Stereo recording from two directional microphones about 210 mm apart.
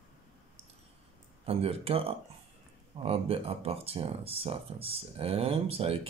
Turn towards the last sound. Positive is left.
turn(degrees=-25)  # may be behind; listen again after turning